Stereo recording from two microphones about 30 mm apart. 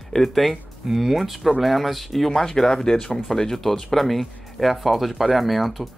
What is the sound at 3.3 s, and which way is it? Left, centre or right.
Speech, centre.